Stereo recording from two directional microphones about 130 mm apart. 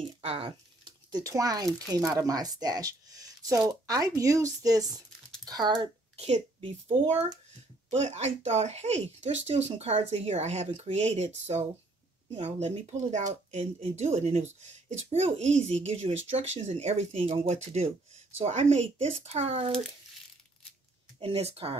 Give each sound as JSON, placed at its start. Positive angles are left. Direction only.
{"t": 0.0, "sound": "speech", "side_deg": -50}
{"t": 6.1, "sound": "speech", "side_deg": -55}
{"t": 21.2, "sound": "speech", "side_deg": -50}